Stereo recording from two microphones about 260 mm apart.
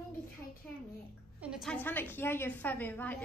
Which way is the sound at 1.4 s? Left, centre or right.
Centre.